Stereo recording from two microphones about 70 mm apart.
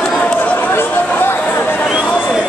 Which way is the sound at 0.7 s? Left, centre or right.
Left.